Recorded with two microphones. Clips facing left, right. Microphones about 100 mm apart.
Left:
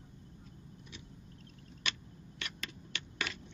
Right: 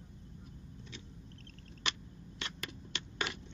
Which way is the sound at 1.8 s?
20° right (ahead or behind).